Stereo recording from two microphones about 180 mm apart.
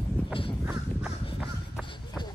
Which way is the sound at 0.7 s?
Centre (ahead or behind).